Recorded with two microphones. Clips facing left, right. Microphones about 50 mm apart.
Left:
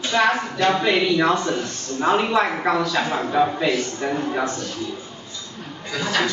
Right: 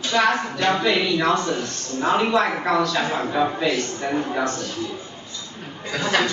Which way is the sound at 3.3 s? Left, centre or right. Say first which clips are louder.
Left 4 dB; centre.